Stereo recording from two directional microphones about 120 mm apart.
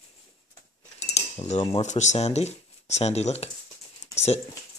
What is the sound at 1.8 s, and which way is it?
Speech, 75° left (ahead or behind).